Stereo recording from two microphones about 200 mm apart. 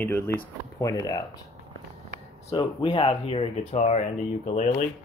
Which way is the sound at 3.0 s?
30° left (ahead or behind).